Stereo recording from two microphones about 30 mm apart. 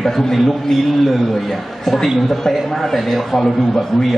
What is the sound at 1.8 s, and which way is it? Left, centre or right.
A man's voice, centre.